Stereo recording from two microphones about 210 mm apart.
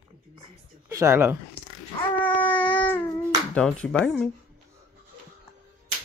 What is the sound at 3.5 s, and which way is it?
Speech, 5° left (ahead or behind).